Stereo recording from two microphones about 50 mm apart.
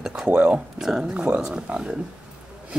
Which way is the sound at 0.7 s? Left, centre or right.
Centre.